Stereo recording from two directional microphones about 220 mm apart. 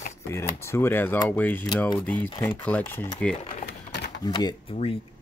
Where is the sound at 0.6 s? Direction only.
10° left (ahead or behind).